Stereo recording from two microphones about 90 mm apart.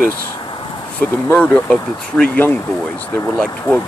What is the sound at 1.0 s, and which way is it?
Speech, 20° left (ahead or behind).